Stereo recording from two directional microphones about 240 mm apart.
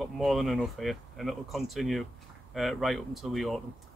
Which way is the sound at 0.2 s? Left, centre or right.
Centre.